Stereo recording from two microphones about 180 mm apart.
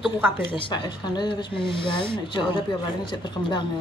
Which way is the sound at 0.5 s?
25° left (ahead or behind).